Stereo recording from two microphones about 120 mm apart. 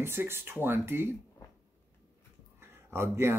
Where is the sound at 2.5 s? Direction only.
20° right (ahead or behind).